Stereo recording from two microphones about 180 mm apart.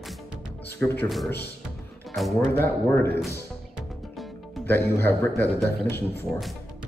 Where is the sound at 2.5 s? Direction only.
15° left (ahead or behind).